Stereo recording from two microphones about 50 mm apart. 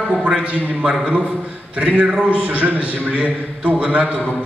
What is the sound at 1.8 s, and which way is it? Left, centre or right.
A man's voice, right.